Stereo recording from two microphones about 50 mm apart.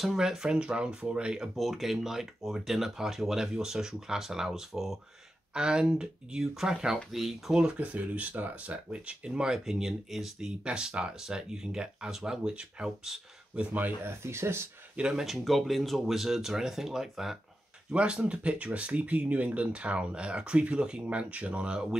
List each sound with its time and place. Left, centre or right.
0.0 s speech: centre
1.6 s speech: centre
5.5 s speech: centre
7.5 s speech: centre
7.9 s speech: right
8.9 s speech: centre
10.6 s speech: centre
13.7 s speech: right
14.2 s speech: right
15.0 s speech: centre
15.2 s speech: centre
17.9 s speech: centre